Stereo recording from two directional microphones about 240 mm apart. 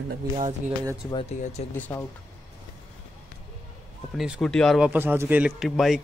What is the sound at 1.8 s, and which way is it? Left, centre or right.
Speech, centre.